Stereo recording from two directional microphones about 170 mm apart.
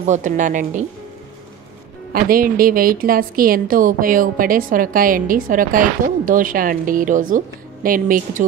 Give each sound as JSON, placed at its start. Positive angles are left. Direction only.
{"t": 0.0, "sound": "a woman's voice", "side_deg": -45}
{"t": 2.1, "sound": "a woman's voice", "side_deg": -55}